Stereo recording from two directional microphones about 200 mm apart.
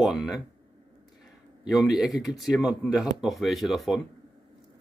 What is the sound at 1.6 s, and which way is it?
Speech, centre (ahead or behind).